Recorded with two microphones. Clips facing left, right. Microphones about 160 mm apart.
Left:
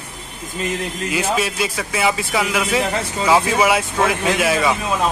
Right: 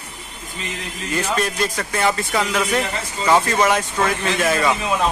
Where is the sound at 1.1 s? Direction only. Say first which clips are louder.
Even; 5° left (ahead or behind).